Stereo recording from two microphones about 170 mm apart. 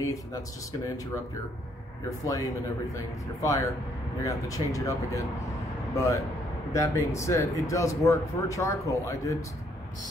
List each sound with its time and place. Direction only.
0.0 s speech: 20° left (ahead or behind)
2.0 s speech: 20° left (ahead or behind)
3.4 s speech: 20° left (ahead or behind)